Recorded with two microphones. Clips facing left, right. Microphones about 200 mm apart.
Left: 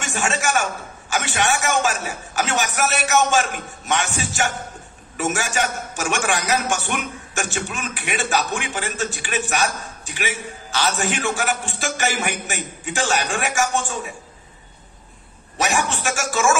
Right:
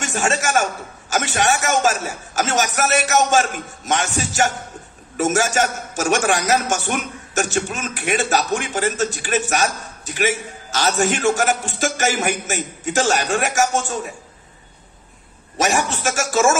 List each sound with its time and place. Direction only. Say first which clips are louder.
0.0 s a sound: right 2 dB; 40° right (ahead or behind)
1.1 s a man's voice: right 2 dB; 40° right (ahead or behind)
15.5 s a man's voice: right 2 dB; 40° right (ahead or behind)